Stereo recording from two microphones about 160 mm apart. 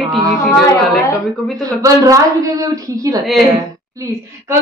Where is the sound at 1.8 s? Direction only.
20° right (ahead or behind).